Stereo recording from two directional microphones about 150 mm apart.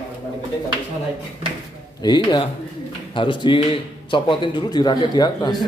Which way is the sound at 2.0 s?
30° left (ahead or behind).